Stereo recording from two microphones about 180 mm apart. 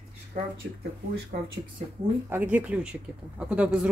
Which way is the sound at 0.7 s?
65° right (ahead or behind).